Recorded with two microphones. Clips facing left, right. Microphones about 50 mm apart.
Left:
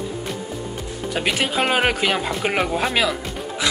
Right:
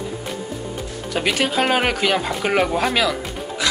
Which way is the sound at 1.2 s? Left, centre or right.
Centre.